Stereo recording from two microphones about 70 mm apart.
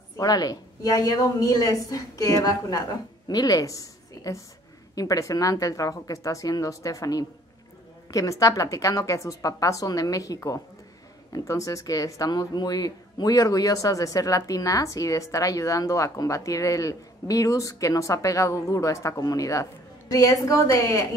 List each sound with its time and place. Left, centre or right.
0.2 s a woman's voice: left